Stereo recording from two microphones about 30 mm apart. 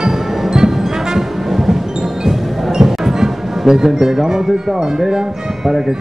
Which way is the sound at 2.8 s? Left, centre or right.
Centre.